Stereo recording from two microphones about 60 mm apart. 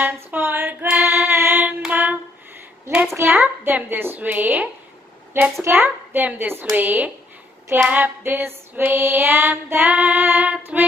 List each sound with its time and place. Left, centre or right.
0.0 s female singing: right
1.0 s music: right
1.9 s a sound: right
3.3 s music: right
5.6 s music: right
6.6 s speech: right
8.2 s music: right